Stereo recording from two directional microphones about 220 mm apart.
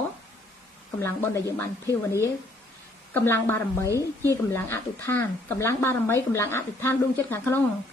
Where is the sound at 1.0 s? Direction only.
15° left (ahead or behind).